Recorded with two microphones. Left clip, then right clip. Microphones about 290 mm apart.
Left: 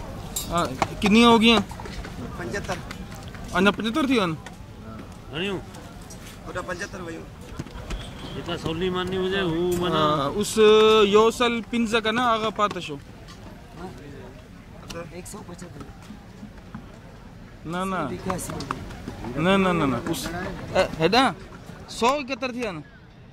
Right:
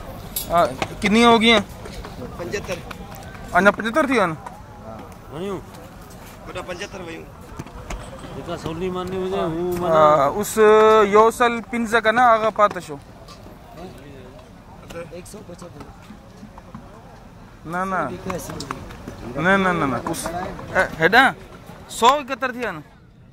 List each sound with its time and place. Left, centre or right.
0.5 s speech: centre
3.5 s speech: centre
5.3 s speech: left
8.5 s speech: left
9.8 s speech: centre
17.6 s speech: centre
19.4 s speech: centre